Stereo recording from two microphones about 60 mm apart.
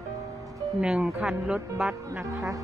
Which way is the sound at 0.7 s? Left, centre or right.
Centre.